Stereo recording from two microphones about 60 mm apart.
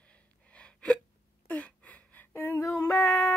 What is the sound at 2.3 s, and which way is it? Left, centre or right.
Female singing, left.